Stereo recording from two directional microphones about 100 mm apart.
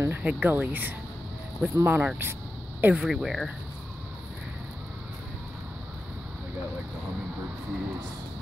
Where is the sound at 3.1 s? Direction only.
Centre (ahead or behind).